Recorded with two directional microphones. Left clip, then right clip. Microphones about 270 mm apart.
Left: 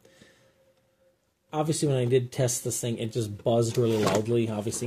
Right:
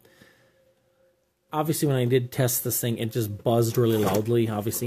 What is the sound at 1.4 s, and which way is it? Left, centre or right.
Speech, centre.